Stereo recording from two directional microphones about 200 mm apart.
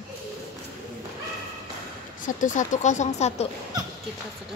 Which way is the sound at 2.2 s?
40° left (ahead or behind).